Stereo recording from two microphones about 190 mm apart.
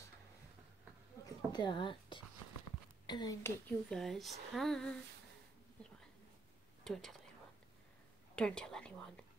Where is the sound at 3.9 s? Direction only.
Centre (ahead or behind).